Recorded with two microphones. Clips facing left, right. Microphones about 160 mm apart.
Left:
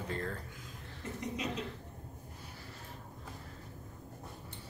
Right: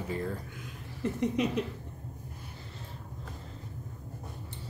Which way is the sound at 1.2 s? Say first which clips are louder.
Right 10 dB; 60° right (ahead or behind).